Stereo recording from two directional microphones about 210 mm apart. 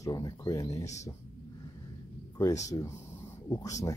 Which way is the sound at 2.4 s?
15° left (ahead or behind).